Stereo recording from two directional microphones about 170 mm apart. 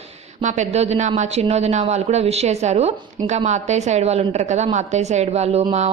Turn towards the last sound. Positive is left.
turn(degrees=-40)  # may be behind; listen again after turning